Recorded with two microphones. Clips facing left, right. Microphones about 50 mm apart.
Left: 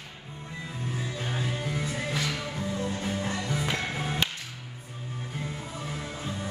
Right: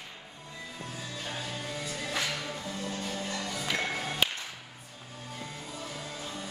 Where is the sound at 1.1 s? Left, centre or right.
Left.